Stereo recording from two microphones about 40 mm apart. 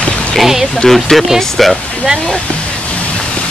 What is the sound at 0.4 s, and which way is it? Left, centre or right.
Speech, centre.